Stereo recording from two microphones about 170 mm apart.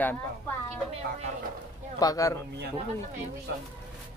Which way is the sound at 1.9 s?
20° left (ahead or behind).